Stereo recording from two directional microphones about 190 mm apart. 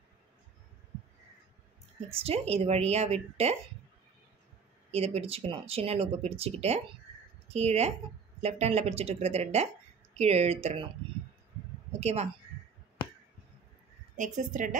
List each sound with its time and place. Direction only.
2.2 s speech: 35° right (ahead or behind)
4.9 s speech: 35° right (ahead or behind)
11.9 s speech: 35° right (ahead or behind)
14.1 s a woman's voice: 40° right (ahead or behind)